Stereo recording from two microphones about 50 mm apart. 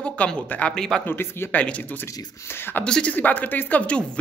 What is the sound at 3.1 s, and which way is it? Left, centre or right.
Speech, left.